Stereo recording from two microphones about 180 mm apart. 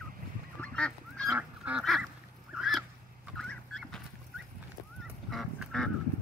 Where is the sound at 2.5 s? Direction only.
Centre (ahead or behind).